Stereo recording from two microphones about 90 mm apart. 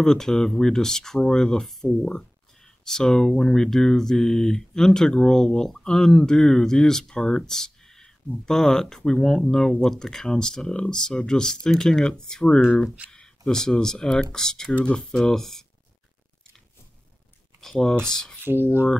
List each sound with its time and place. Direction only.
0.0 s speech: 5° left (ahead or behind)
17.6 s speech: 5° left (ahead or behind)
18.4 s speech: 25° right (ahead or behind)